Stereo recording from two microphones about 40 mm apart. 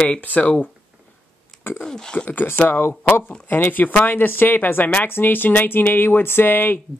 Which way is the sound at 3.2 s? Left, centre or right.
Left.